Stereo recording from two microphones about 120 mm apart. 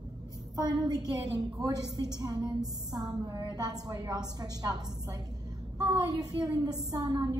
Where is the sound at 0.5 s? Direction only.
35° right (ahead or behind).